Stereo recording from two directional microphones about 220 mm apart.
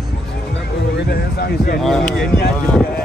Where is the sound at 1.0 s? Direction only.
45° left (ahead or behind).